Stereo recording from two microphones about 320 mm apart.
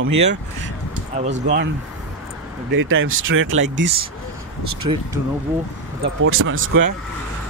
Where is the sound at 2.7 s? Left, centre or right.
Right.